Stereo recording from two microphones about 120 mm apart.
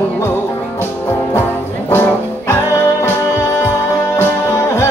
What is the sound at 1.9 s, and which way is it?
Music, 20° left (ahead or behind).